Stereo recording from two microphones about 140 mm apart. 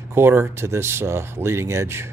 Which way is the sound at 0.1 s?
15° right (ahead or behind).